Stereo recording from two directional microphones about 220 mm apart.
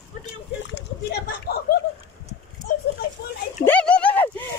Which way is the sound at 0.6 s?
45° left (ahead or behind).